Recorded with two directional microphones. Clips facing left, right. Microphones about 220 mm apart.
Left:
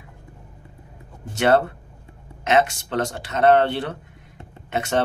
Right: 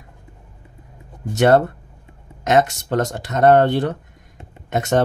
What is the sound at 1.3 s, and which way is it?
Speech, 45° right (ahead or behind).